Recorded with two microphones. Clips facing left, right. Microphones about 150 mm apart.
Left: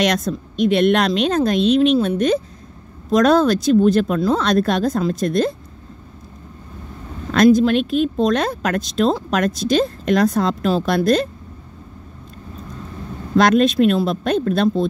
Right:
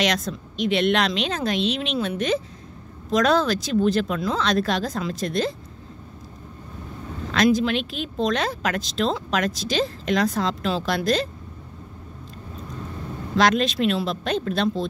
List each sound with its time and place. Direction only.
0.0 s speech: 50° left (ahead or behind)
7.5 s speech: 45° left (ahead or behind)
13.4 s speech: 50° left (ahead or behind)